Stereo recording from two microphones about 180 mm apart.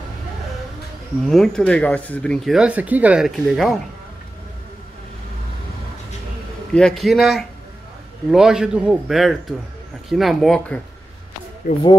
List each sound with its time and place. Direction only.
1.3 s speech: 5° left (ahead or behind)
6.7 s speech: 5° left (ahead or behind)
11.7 s speech: 50° left (ahead or behind)